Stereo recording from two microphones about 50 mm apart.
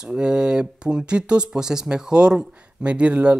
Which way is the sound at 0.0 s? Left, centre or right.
Centre.